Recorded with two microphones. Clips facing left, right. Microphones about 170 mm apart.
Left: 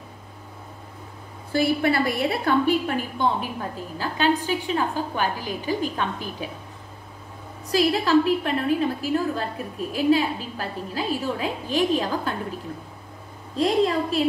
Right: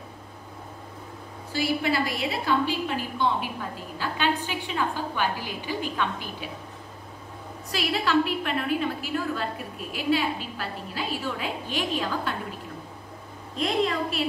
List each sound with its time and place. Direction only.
1.5 s a woman's voice: 55° left (ahead or behind)
7.7 s a woman's voice: 40° left (ahead or behind)
13.6 s a woman's voice: 35° left (ahead or behind)